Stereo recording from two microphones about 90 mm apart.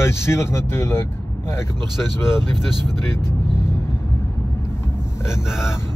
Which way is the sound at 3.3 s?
30° left (ahead or behind).